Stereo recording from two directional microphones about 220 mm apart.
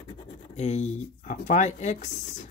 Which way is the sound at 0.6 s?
30° left (ahead or behind).